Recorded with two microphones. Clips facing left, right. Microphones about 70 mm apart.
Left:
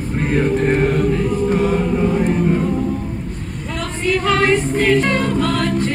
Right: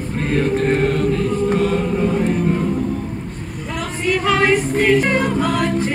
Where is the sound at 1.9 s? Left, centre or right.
Centre.